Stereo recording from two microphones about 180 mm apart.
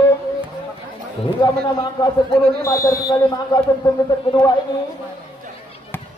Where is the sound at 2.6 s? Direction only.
15° left (ahead or behind).